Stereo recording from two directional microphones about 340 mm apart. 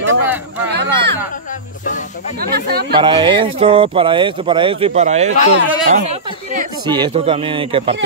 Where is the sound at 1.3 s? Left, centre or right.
Left.